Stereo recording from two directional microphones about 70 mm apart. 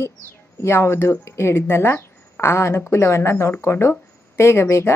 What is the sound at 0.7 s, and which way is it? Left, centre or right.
A woman's voice, left.